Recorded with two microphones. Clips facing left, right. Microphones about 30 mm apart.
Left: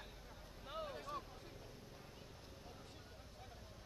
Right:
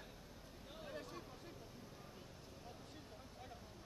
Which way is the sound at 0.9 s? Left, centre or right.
Centre.